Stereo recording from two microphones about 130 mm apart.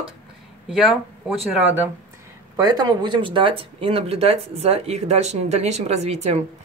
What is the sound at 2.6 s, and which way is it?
Speech, 30° right (ahead or behind).